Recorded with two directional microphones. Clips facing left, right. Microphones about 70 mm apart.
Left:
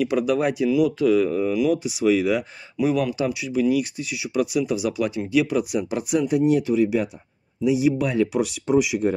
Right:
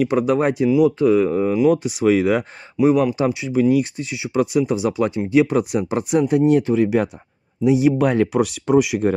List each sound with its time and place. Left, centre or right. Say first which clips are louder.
0.0 s speech: right 3 dB; right
1.8 s speech: right 3 dB; right
2.8 s speech: right 6 dB; right